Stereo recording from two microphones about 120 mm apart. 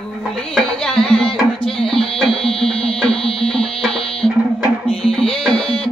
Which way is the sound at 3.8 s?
Centre (ahead or behind).